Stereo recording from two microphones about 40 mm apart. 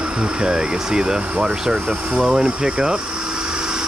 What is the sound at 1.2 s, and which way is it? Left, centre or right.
Speech, right.